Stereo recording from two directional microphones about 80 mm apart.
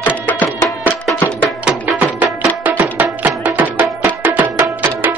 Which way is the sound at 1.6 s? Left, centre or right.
Centre.